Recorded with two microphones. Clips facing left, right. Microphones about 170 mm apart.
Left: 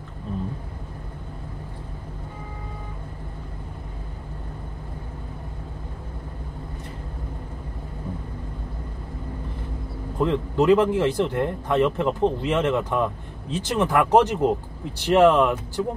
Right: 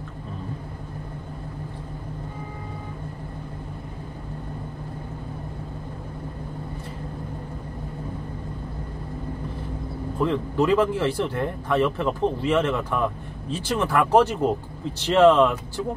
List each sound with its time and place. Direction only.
10.1 s speech: 20° left (ahead or behind)